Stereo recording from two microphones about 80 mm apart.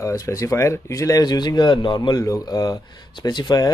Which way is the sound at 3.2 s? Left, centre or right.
Left.